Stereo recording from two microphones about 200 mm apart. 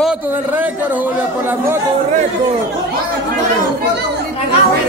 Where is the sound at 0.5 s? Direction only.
10° right (ahead or behind).